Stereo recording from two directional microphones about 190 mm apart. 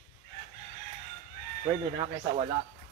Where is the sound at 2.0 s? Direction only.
30° right (ahead or behind).